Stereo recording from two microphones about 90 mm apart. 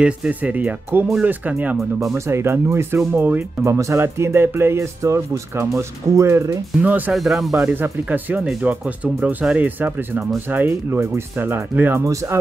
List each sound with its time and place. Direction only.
0.0 s speech: 15° right (ahead or behind)
2.1 s speech: 30° right (ahead or behind)
6.8 s speech: 20° right (ahead or behind)
7.1 s speech: 5° right (ahead or behind)
7.6 s speech: 25° right (ahead or behind)
10.7 s speech: 30° right (ahead or behind)
12.0 s speech: 35° right (ahead or behind)